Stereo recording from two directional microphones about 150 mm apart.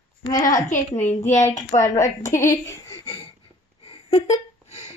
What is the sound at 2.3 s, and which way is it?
Speech, 20° left (ahead or behind).